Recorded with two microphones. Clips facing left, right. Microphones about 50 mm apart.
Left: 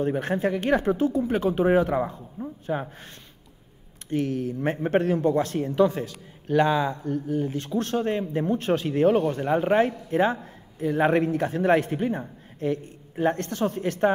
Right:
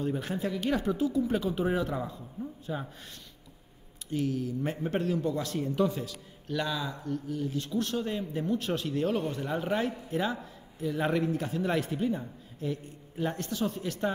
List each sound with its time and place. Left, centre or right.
0.0 s speech: left
4.1 s speech: left